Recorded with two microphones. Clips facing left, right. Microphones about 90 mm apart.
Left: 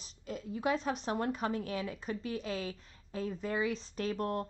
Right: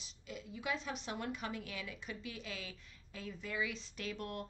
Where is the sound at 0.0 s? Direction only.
40° left (ahead or behind).